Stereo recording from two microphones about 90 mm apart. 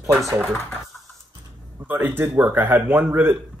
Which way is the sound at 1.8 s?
20° right (ahead or behind).